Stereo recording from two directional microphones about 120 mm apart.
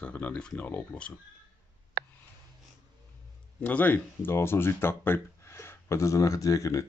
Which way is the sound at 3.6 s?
15° left (ahead or behind).